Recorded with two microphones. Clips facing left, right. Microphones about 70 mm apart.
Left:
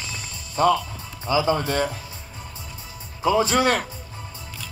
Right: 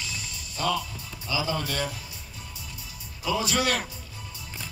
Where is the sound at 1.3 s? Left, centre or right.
Left.